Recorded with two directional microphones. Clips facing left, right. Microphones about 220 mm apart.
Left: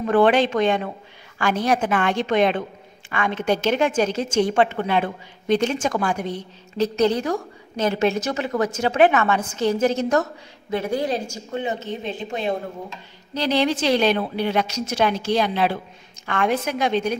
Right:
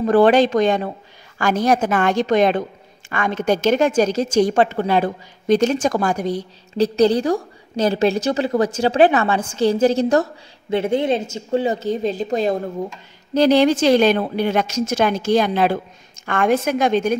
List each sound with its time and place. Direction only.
0.0 s a woman's voice: 35° right (ahead or behind)